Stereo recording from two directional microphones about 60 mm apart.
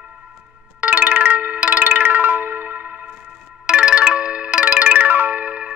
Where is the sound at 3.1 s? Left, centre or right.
Centre.